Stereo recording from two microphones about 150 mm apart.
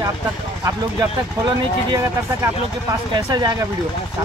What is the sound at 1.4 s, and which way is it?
Speech, 25° right (ahead or behind).